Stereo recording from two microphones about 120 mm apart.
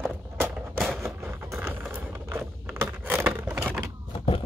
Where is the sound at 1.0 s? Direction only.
20° right (ahead or behind).